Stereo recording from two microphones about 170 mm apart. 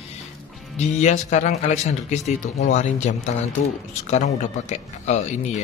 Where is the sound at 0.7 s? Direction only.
40° left (ahead or behind).